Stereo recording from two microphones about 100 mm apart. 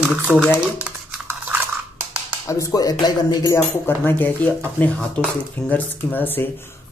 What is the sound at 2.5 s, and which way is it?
Music, 35° left (ahead or behind).